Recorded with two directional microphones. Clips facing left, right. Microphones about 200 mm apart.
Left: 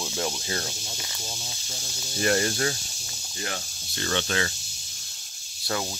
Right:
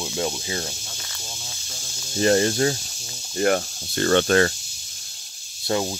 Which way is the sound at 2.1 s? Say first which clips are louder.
Right 6 dB; 30° right (ahead or behind).